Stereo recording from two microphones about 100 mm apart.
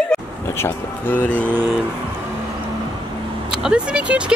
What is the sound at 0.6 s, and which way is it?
Speech, 20° left (ahead or behind).